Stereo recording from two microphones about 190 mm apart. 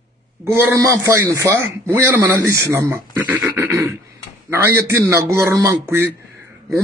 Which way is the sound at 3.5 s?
10° right (ahead or behind).